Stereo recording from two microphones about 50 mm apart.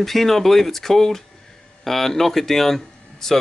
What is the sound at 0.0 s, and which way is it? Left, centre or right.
Speech, centre.